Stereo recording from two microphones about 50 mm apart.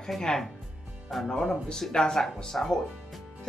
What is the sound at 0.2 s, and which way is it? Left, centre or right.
Speech, centre.